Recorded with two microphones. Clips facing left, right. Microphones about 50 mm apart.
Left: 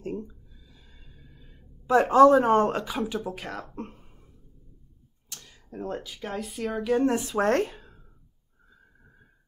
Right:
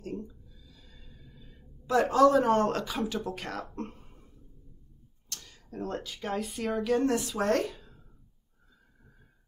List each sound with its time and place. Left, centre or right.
0.0 s a sound: left
2.9 s speech: centre
5.3 s speech: centre
7.1 s speech: left
7.3 s speech: left